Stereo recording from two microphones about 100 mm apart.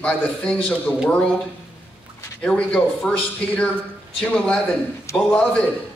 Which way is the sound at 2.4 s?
10° left (ahead or behind).